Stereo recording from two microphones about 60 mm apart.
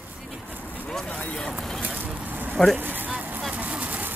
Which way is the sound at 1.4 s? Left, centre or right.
Centre.